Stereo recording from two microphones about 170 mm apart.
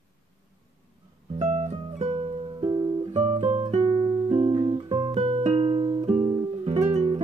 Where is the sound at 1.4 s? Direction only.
40° right (ahead or behind).